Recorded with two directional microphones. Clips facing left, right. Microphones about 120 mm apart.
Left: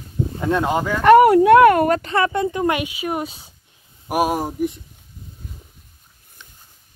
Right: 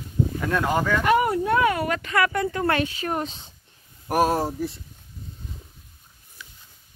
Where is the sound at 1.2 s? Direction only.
85° left; by 1.9 s 60° left (ahead or behind).